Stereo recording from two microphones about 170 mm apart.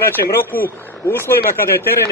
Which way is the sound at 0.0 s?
15° left (ahead or behind).